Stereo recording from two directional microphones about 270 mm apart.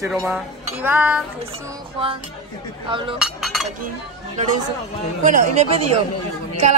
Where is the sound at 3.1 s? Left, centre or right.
Centre.